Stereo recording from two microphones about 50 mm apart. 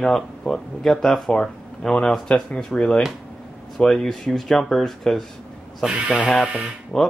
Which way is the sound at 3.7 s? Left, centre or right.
Centre.